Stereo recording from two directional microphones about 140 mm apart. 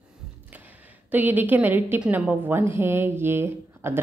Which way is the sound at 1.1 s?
15° right (ahead or behind).